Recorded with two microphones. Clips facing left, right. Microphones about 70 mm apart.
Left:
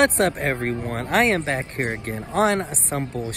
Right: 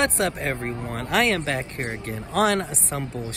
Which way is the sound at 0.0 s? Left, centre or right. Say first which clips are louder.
Left 4 dB; left.